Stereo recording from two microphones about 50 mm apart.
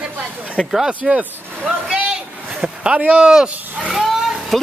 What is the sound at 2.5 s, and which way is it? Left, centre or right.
Speech, right.